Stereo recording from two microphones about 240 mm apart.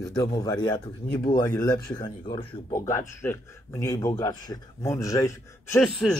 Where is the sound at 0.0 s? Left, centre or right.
Centre.